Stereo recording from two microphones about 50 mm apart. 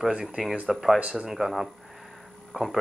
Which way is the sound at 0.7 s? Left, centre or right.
Centre.